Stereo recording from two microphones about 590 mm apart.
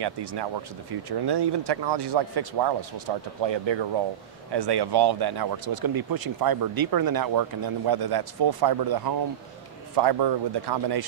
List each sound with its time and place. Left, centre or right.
0.0 s speech: right